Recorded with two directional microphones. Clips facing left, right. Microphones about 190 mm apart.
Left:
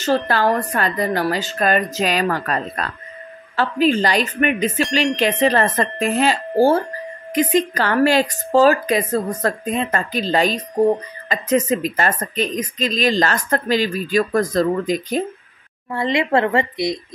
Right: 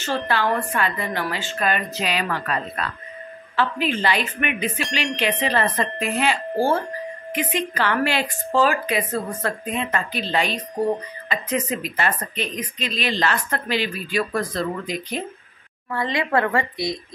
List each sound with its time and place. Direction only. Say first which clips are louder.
0.3 s a woman's voice: left 4 dB; 40° left (ahead or behind)
15.9 s speech: left 4 dB; 25° left (ahead or behind)